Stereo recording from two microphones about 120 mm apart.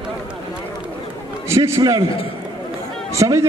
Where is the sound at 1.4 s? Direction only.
25° right (ahead or behind).